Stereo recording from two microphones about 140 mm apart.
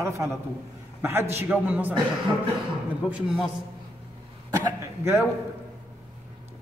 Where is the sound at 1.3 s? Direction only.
10° right (ahead or behind).